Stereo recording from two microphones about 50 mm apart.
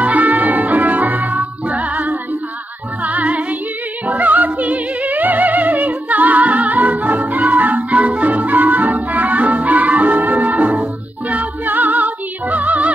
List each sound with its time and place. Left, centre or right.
0.0 s music: right